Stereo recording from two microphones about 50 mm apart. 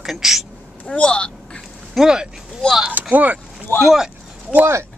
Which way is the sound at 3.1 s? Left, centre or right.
Right.